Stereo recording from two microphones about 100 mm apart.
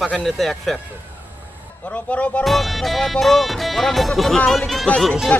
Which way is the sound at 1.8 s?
10° left (ahead or behind).